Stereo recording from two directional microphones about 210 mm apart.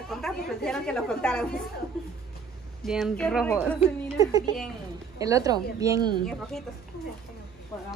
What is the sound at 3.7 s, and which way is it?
Speech, 15° right (ahead or behind).